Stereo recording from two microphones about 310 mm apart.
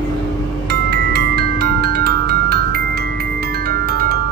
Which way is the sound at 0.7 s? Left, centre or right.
Right.